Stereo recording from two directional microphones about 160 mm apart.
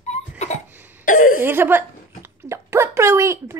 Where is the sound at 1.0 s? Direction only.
60° left (ahead or behind).